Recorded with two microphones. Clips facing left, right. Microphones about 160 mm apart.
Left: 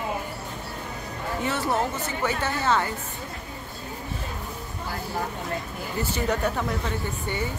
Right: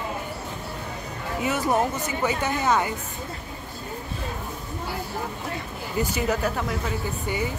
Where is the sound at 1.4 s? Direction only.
10° right (ahead or behind).